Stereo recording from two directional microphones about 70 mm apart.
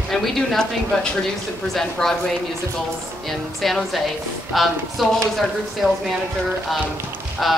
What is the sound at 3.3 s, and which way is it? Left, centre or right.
Speech, centre.